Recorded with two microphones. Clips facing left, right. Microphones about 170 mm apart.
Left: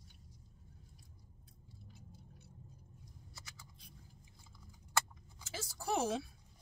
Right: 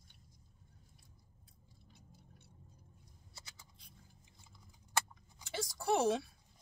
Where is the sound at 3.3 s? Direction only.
25° right (ahead or behind).